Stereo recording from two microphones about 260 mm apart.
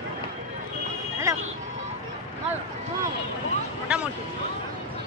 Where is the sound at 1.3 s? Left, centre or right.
Centre.